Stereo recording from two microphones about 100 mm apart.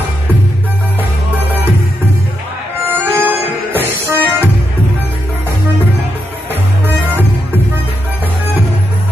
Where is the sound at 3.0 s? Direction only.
20° right (ahead or behind).